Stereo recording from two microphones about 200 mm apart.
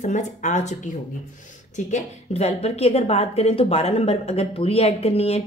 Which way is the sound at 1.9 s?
35° left (ahead or behind).